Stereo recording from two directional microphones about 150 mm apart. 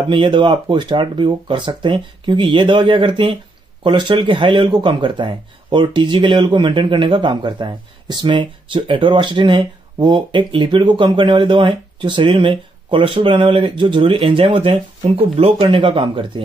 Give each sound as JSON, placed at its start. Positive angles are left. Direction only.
{"t": 0.1, "sound": "speech", "side_deg": -30}